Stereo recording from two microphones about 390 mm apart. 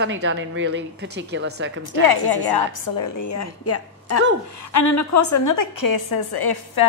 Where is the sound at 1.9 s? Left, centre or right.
Left.